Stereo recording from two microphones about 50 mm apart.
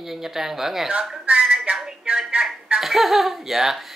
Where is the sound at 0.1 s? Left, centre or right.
Centre.